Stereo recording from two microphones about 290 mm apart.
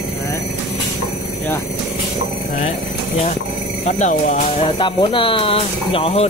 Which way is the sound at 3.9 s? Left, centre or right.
Left.